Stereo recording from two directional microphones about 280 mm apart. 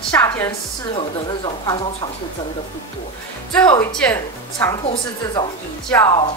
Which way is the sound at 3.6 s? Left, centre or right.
Centre.